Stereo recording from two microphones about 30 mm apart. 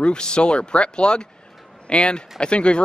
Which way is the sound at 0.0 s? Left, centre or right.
Left.